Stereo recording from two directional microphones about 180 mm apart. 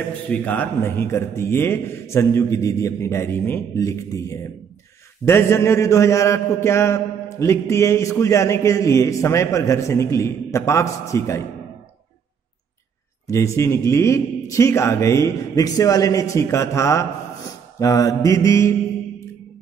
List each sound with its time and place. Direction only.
0.3 s a man's voice: 10° left (ahead or behind)
13.3 s a man's voice: 15° left (ahead or behind)